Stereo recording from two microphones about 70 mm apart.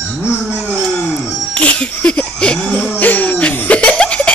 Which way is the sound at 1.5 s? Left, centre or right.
Centre.